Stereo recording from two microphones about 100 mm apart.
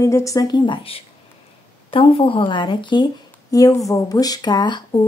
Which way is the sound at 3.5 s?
35° left (ahead or behind).